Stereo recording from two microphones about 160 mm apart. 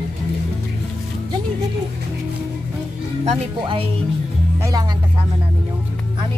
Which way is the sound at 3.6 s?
35° right (ahead or behind).